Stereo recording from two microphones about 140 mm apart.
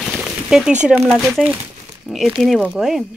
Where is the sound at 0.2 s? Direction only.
5° right (ahead or behind).